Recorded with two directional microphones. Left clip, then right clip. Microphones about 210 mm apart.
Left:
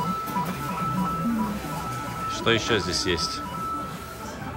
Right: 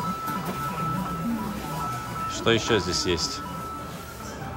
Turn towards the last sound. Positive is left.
turn(degrees=-20)  # may be behind; listen again after turning